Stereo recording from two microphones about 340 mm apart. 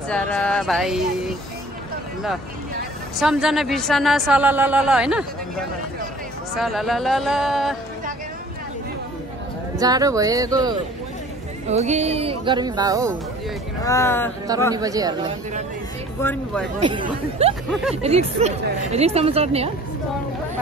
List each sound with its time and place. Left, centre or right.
0.1 s a woman's voice: centre
3.2 s a woman's voice: centre
6.5 s a woman's voice: centre
9.8 s a woman's voice: centre
13.8 s speech: centre
14.7 s a woman's voice: centre
16.2 s speech: centre
16.8 s a woman's voice: centre